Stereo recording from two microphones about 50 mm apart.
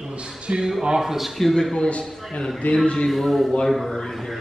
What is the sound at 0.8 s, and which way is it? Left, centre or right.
A man's voice, centre.